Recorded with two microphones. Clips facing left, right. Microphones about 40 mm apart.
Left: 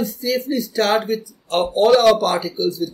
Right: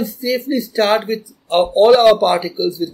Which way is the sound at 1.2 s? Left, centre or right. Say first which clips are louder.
Right 5 dB; right.